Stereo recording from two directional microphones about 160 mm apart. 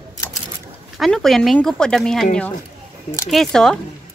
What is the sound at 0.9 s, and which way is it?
Speech, centre (ahead or behind).